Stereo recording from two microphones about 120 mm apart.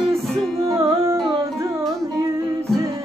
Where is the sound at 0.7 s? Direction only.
25° right (ahead or behind).